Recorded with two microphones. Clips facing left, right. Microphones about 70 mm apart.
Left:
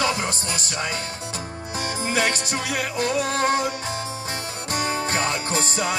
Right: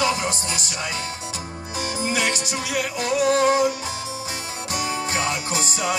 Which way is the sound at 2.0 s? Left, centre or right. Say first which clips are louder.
Left 1 dB; left.